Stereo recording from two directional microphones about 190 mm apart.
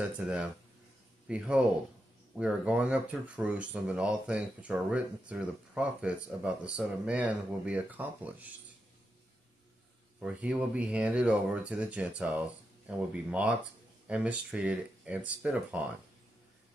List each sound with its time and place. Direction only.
0.2 s speech: 5° right (ahead or behind)
10.2 s speech: 5° right (ahead or behind)